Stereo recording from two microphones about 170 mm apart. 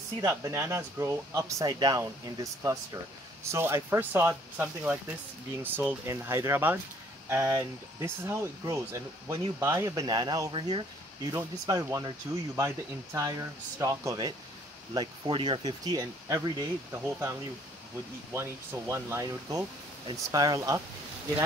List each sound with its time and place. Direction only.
0.2 s speech: 15° right (ahead or behind)